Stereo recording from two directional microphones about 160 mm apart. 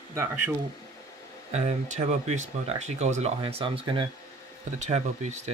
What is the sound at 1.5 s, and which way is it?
Speech, 45° right (ahead or behind).